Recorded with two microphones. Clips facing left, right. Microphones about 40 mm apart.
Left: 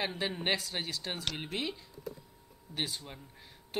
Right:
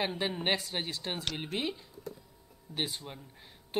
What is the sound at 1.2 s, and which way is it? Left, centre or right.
Speech, centre.